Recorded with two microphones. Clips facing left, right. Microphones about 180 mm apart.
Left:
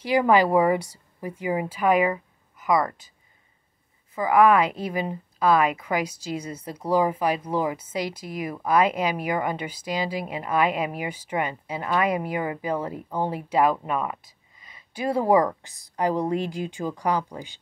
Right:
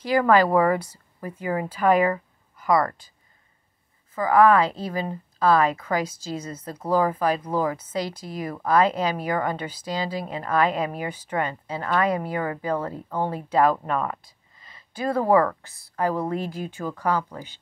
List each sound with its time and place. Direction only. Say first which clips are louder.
0.2 s speech: even; 15° left (ahead or behind)
4.1 s speech: right 1 dB; 15° left (ahead or behind)